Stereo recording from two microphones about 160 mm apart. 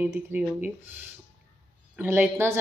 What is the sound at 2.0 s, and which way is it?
Speech, 10° right (ahead or behind).